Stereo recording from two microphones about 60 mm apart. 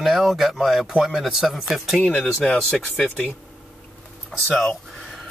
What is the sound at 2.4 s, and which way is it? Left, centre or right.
Speech, centre.